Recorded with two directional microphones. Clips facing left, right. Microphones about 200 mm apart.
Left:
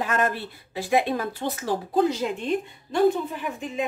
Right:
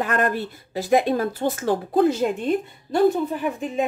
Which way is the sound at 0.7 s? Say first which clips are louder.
Right 4 dB; 40° right (ahead or behind).